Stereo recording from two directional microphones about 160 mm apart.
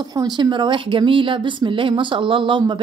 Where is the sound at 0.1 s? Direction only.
25° right (ahead or behind).